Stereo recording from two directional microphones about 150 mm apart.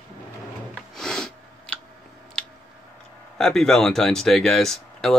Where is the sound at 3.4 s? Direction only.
5° left (ahead or behind).